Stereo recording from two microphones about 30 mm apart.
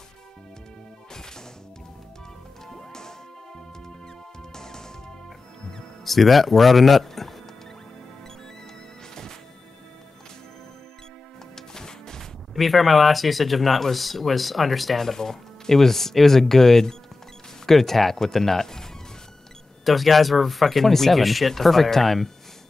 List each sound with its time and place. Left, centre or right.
2.7 s music: centre
6.0 s speech: centre
11.5 s music: centre
12.5 s speech: centre
15.1 s speech: centre
15.7 s speech: centre
19.8 s speech: centre